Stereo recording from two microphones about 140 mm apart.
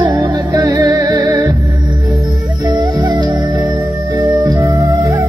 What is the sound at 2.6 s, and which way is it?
Music, 30° right (ahead or behind).